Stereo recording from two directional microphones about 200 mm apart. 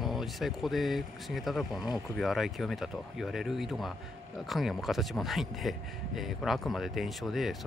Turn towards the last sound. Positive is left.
turn(degrees=0)  # may be behind; listen again after turning